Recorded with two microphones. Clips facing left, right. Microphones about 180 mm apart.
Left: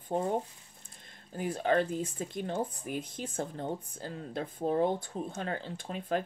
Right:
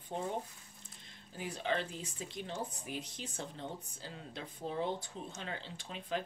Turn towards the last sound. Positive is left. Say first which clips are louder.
# left 6 dB
turn(degrees=50)  # may be behind; listen again after turning